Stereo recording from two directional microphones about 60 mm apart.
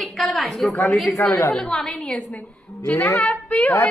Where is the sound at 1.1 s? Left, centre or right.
Left.